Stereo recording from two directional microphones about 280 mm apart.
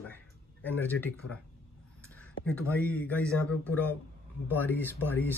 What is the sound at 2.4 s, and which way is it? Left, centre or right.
A man's voice, centre.